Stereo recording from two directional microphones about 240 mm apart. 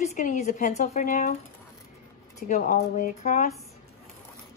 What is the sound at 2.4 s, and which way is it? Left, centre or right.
Speech, left.